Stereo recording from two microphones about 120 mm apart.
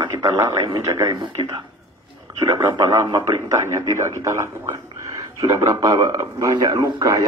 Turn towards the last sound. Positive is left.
turn(degrees=-30)  # may be behind; listen again after turning